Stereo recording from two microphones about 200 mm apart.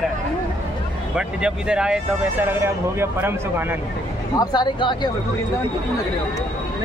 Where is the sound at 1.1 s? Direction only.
5° right (ahead or behind).